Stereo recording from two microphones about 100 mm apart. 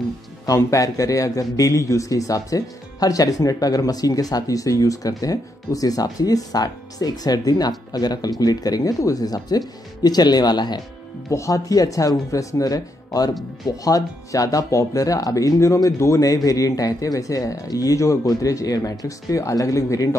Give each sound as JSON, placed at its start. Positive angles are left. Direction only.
{"t": 0.6, "sound": "a man's voice", "side_deg": 30}
{"t": 11.2, "sound": "a man's voice", "side_deg": 30}